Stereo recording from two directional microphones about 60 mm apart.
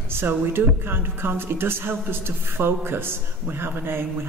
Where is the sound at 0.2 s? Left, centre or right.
Right.